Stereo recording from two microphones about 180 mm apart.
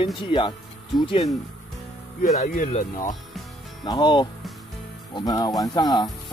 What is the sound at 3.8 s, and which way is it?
Speech, 25° left (ahead or behind).